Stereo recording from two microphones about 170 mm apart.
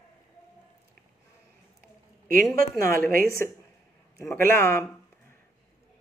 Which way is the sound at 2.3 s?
60° right (ahead or behind).